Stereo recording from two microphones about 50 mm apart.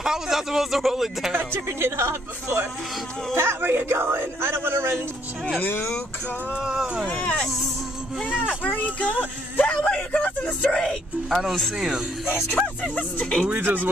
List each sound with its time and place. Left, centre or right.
0.0 s a man's voice: centre
1.3 s speech: right
5.6 s speech: left
6.6 s a man's voice: centre
7.1 s speech: left
8.6 s speech: left
10.7 s speech: centre
11.7 s a man's voice: centre
12.4 s speech: centre
12.9 s speech: left
13.6 s speech: right